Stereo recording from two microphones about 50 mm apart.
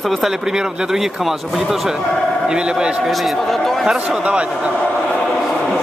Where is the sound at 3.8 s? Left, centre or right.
Centre.